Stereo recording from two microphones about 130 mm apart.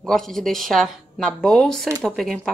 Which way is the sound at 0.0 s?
Centre (ahead or behind).